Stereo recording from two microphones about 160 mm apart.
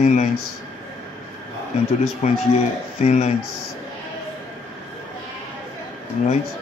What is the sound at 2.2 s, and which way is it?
Speech, 50° left (ahead or behind).